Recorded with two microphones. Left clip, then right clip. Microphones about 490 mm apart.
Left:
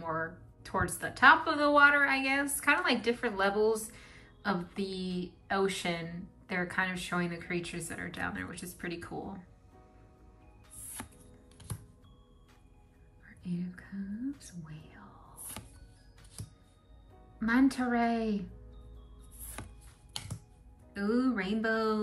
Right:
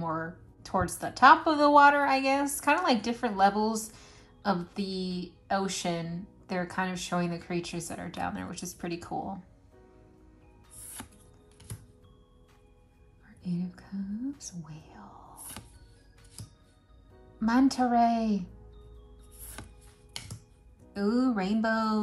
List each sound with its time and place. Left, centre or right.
0.0 s a woman's voice: centre
11.0 s chopping: centre
13.2 s whispering: centre
17.4 s a woman's voice: centre
19.6 s chopping: centre
20.9 s speech: centre